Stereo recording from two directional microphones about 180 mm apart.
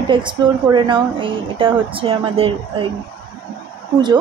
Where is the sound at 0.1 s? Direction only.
25° right (ahead or behind).